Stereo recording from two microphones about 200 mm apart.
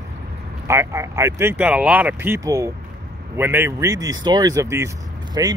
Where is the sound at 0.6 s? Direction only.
15° right (ahead or behind).